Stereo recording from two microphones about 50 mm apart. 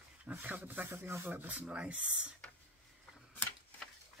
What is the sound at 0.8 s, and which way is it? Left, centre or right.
Speech, right.